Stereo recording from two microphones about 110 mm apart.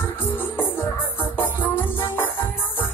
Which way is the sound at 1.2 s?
15° left (ahead or behind).